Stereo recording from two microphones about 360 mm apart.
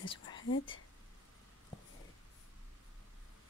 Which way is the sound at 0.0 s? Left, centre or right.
Centre.